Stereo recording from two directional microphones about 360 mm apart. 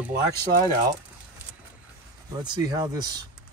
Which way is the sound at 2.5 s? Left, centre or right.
Centre.